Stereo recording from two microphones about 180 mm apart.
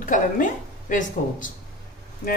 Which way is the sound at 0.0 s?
45° left (ahead or behind).